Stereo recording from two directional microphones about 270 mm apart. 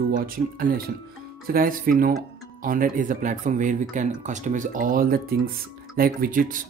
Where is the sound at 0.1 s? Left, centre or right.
Right.